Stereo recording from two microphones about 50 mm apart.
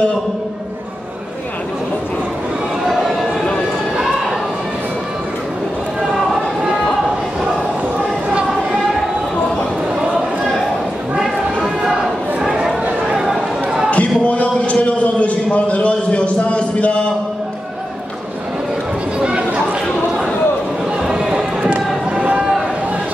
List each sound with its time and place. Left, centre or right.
2.9 s run: centre
11.1 s a sound: centre
13.0 s chatter: centre
13.8 s a sound: left
19.1 s run: right
21.1 s run: centre